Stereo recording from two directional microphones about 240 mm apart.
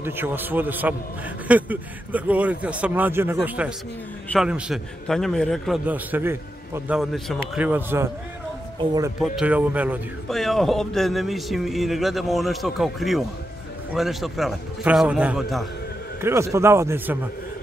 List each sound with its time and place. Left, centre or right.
0.0 s a man's voice: centre
9.2 s a man's voice: centre